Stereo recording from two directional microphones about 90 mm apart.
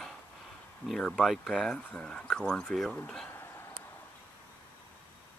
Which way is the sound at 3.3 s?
25° left (ahead or behind).